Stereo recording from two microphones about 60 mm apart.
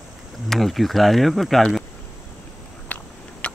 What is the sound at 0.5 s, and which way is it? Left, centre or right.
Speech, centre.